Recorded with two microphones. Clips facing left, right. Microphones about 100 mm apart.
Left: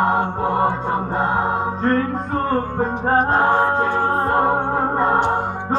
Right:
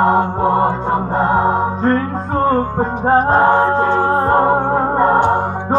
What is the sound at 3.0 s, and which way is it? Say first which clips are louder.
Music: right 5 dB; 20° right (ahead or behind).